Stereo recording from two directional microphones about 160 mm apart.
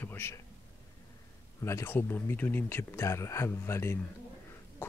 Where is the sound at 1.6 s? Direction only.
15° left (ahead or behind).